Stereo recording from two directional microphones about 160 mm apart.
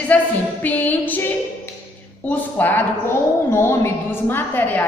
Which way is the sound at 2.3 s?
10° left (ahead or behind).